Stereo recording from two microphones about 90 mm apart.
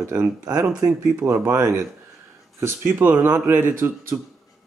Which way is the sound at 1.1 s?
30° right (ahead or behind).